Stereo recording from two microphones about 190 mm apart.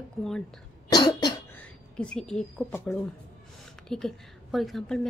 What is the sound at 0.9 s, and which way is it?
Cough, 20° left (ahead or behind).